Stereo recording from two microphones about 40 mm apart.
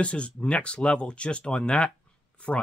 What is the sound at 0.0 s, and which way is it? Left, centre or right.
Speech, left.